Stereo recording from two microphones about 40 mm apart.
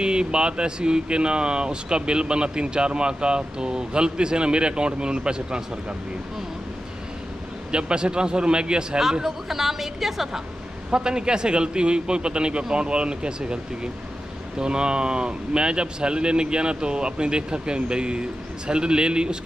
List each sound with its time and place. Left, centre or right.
0.0 s speech: right
7.7 s speech: right
9.2 s a woman's voice: centre
10.9 s speech: right
14.6 s speech: right